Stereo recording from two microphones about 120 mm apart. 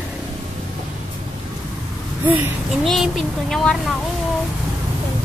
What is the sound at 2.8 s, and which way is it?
Speech, centre (ahead or behind).